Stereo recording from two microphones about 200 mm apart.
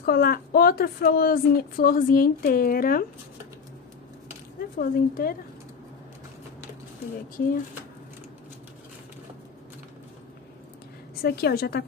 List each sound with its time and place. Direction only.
0.0 s a woman's voice: 50° left (ahead or behind)
4.7 s a woman's voice: 45° left (ahead or behind)
7.3 s a woman's voice: 45° left (ahead or behind)
11.2 s a woman's voice: 50° left (ahead or behind)